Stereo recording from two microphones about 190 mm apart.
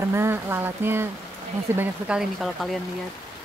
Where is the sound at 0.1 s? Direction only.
10° right (ahead or behind).